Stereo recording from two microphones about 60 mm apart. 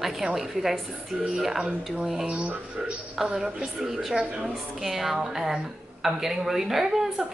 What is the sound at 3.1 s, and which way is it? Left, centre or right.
A woman's voice, centre.